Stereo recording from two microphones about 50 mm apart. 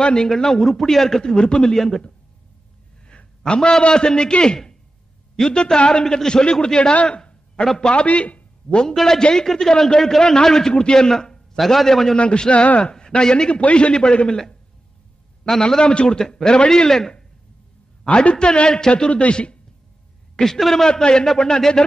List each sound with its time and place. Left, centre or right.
0.0 s a man's voice: centre
7.1 s a sound: centre
7.6 s a man's voice: centre
7.9 s speech: left
8.9 s a man's voice: centre
12.2 s a man's voice: left
18.0 s a man's voice: left
20.3 s a man's voice: centre
20.9 s a man's voice: centre